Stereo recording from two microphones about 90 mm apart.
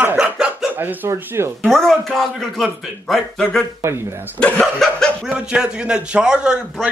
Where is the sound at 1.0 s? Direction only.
30° right (ahead or behind).